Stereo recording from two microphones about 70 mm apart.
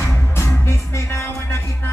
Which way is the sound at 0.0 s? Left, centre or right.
Left.